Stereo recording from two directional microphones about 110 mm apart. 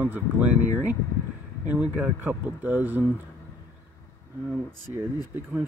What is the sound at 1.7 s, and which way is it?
Speech, 20° right (ahead or behind).